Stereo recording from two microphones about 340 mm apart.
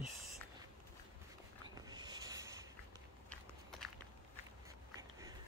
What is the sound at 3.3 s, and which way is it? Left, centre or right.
Walk, centre.